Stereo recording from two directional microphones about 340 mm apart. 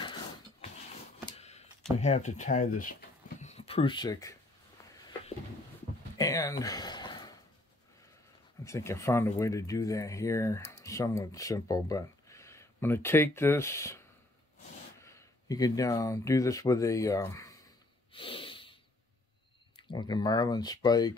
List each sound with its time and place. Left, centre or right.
0.0 s a sound: centre
2.0 s speech: centre
6.1 s a sound: centre
8.6 s speech: centre
15.0 s speech: centre
18.1 s snort: centre
19.9 s speech: centre